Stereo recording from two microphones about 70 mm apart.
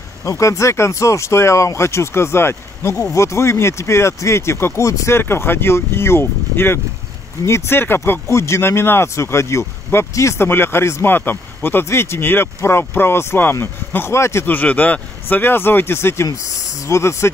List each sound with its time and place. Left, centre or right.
0.2 s speech: left
3.0 s speech: left
8.3 s speech: left
14.4 s speech: left